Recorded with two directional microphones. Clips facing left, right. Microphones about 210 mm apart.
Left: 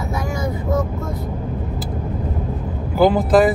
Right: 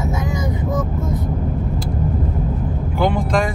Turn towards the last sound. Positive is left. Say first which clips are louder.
# left 5 dB
turn(degrees=5)  # may be behind; listen again after turning